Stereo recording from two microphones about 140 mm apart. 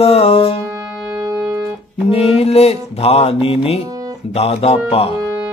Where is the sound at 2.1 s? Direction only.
45° left (ahead or behind).